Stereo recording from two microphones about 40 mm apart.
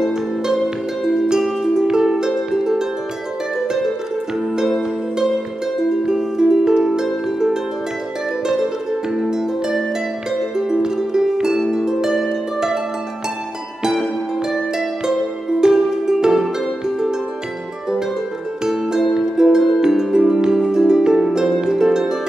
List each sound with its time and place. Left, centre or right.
0.0 s music: centre
5.9 s music: centre
9.2 s harp: centre
10.5 s music: centre
11.7 s harp: centre
14.5 s harp: centre
15.6 s music: centre
18.6 s music: centre
20.5 s harp: centre